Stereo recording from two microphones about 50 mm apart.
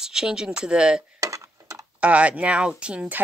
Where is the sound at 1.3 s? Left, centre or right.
Right.